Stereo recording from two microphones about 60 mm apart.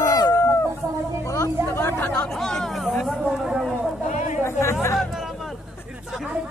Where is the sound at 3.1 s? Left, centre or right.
Centre.